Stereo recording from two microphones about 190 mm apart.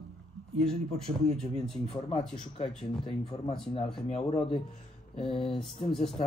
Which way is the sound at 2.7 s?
5° left (ahead or behind).